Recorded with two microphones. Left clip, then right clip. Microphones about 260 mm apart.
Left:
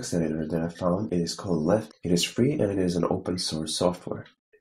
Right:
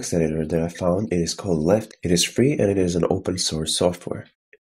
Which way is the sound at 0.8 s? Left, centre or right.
Right.